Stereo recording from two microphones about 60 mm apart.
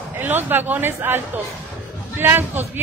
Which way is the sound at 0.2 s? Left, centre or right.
Right.